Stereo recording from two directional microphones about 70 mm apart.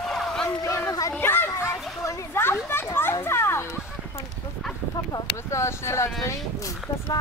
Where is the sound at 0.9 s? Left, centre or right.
Left.